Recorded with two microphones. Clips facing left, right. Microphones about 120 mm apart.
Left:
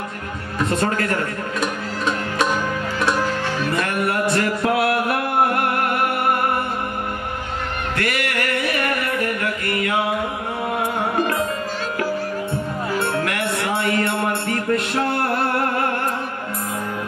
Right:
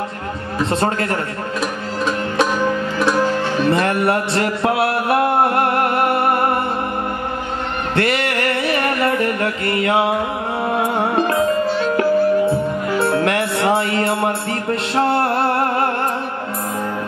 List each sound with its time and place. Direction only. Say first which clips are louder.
0.7 s a man's voice: right 1 dB; 30° right (ahead or behind)
1.6 s music: right 2 dB; centre (ahead or behind)
3.7 s music: right 3 dB; 30° right (ahead or behind)
7.9 s music: right 6 dB; 30° right (ahead or behind)
13.1 s music: right 5 dB; 30° right (ahead or behind)